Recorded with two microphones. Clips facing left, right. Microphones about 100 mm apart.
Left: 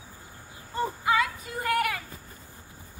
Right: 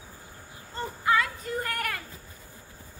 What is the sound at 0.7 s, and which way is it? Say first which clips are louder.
Music: left 1 dB; 15° left (ahead or behind).